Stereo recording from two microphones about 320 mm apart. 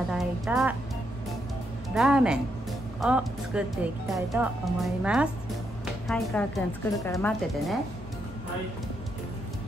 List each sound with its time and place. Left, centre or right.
0.1 s music: centre
2.0 s speech: centre